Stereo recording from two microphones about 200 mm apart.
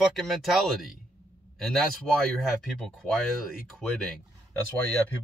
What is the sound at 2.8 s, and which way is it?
Speech, centre (ahead or behind).